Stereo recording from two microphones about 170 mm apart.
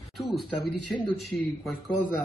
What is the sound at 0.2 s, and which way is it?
Speech, centre (ahead or behind).